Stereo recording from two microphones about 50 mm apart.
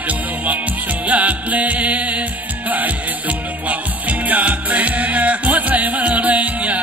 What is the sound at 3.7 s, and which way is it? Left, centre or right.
Music, right.